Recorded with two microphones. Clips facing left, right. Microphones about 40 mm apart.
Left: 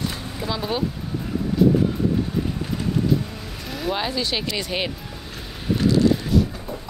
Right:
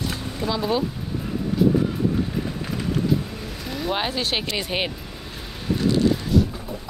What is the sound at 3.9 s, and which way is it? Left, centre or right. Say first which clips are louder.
Speech: right 1 dB; right.